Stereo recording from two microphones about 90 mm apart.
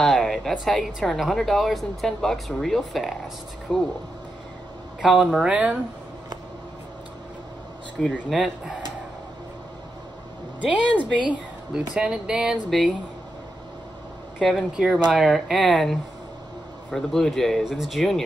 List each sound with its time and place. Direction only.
0.0 s speech: centre (ahead or behind)
5.0 s speech: 5° right (ahead or behind)
8.0 s speech: 5° left (ahead or behind)
10.9 s speech: 10° left (ahead or behind)
11.2 s speech: 10° right (ahead or behind)
12.6 s speech: 5° left (ahead or behind)
14.4 s speech: 5° left (ahead or behind)
14.8 s speech: 5° right (ahead or behind)